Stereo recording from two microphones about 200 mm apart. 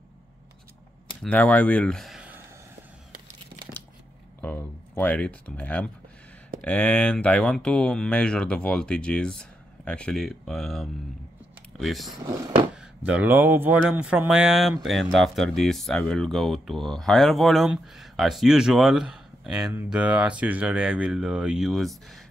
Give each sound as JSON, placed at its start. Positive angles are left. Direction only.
{"t": 1.2, "sound": "speech", "side_deg": 5}
{"t": 4.4, "sound": "a sound", "side_deg": 10}
{"t": 6.6, "sound": "speech", "side_deg": 5}
{"t": 12.2, "sound": "speech", "side_deg": -20}
{"t": 12.7, "sound": "speech", "side_deg": -5}